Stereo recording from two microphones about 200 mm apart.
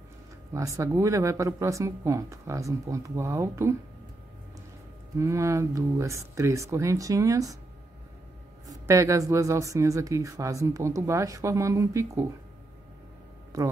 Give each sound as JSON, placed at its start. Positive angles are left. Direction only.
{"t": 0.6, "sound": "speech", "side_deg": -15}
{"t": 5.2, "sound": "speech", "side_deg": -15}
{"t": 8.6, "sound": "speech", "side_deg": -15}
{"t": 13.5, "sound": "speech", "side_deg": -15}